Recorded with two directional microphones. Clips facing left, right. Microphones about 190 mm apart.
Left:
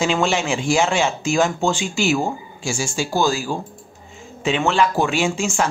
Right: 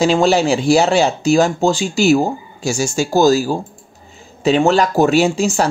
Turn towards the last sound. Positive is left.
turn(degrees=-35)  # may be behind; listen again after turning